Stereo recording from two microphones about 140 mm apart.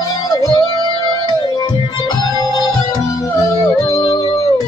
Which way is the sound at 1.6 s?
30° left (ahead or behind).